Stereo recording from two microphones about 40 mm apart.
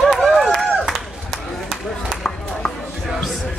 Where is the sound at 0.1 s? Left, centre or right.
Centre.